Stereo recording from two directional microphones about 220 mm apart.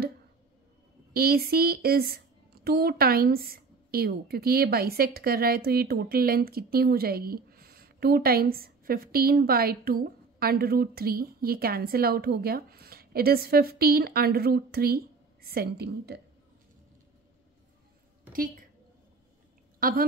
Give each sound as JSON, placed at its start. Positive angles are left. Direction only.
{"t": 1.1, "sound": "a woman's voice", "side_deg": -45}
{"t": 18.3, "sound": "a woman's voice", "side_deg": -40}
{"t": 19.8, "sound": "a woman's voice", "side_deg": -40}